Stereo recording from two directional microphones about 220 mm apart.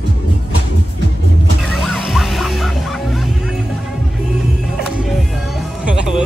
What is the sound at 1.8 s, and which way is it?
Music, centre (ahead or behind).